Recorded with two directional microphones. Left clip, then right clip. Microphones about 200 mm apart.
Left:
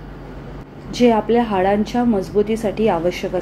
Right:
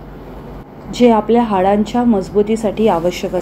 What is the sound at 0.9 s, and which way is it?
A woman's voice, 15° right (ahead or behind).